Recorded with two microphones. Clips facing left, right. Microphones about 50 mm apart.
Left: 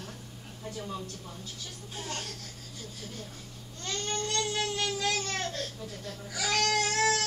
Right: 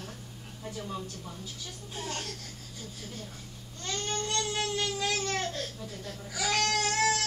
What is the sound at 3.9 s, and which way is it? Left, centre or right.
Baby cry, centre.